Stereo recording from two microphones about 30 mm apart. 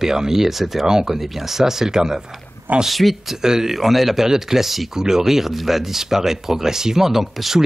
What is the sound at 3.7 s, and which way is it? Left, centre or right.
Speech, centre.